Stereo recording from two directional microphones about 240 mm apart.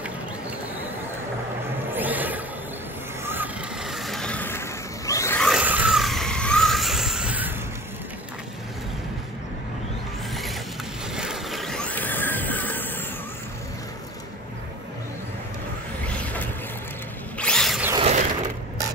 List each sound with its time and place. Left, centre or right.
2.0 s a sound: centre
3.3 s vehicle: centre
11.1 s a sound: centre
16.1 s vehicle: centre
17.4 s drill: centre
17.9 s mechanisms: right